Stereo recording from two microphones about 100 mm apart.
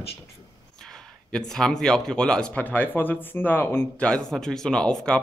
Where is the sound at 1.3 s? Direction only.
5° left (ahead or behind).